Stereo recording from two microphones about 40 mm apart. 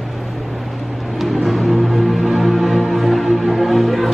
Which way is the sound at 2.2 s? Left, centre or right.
Centre.